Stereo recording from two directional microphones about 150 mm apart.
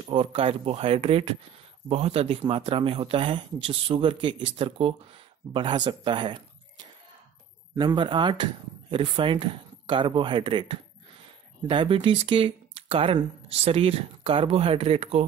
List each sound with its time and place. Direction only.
0.0 s speech: 40° right (ahead or behind)